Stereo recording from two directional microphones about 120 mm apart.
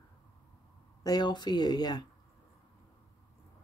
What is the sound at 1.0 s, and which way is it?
Speech, 35° left (ahead or behind).